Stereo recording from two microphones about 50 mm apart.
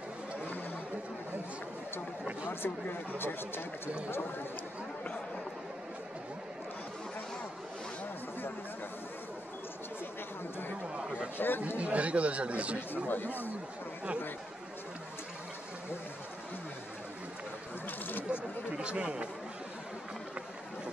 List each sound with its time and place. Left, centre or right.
2.4 s speech: left
11.3 s chatter: left
11.8 s speech: right
12.9 s speech: left
17.8 s a sound: left
18.3 s a sound: right